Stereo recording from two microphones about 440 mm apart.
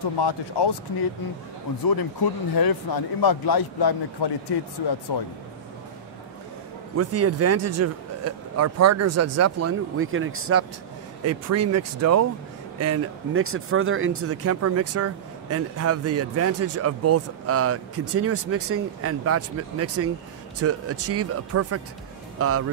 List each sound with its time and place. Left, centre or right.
0.2 s speech: left
2.5 s a man's voice: left
7.0 s speech: right